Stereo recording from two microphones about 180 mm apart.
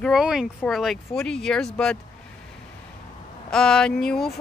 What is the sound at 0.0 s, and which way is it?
Speech, centre (ahead or behind).